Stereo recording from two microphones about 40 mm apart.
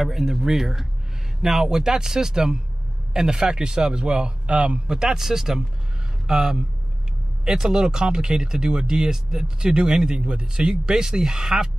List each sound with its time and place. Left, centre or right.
0.0 s a man's voice: centre